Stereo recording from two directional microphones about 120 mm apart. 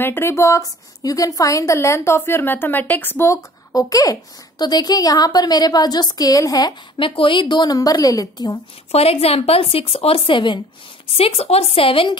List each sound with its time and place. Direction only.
0.0 s a woman's voice: 20° left (ahead or behind)
7.0 s a woman's voice: 45° left (ahead or behind)
8.9 s a woman's voice: 55° left (ahead or behind)